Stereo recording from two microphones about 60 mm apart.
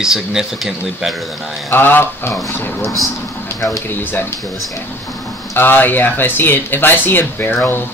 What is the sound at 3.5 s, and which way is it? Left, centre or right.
Speech, left.